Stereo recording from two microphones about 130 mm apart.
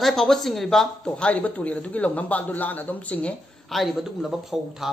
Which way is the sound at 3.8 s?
Centre (ahead or behind).